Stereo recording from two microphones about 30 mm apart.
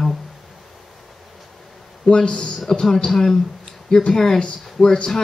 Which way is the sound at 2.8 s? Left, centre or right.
Centre.